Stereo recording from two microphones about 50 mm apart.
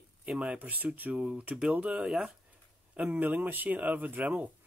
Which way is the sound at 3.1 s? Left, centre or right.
Right.